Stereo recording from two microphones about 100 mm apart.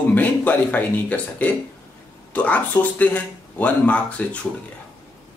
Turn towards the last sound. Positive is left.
turn(degrees=15)  # may be behind; listen again after turning